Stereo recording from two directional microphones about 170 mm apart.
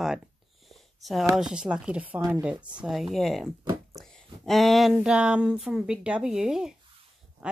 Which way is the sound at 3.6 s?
20° right (ahead or behind).